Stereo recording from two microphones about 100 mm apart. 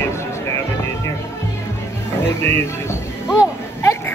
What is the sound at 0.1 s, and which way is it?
Music, 30° left (ahead or behind).